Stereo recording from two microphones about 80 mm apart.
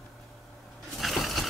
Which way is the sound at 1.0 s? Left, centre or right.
Centre.